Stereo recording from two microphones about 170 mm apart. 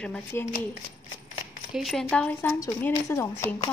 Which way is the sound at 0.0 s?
10° left (ahead or behind).